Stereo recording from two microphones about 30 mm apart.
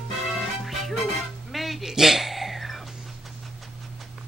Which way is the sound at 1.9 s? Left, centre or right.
Centre.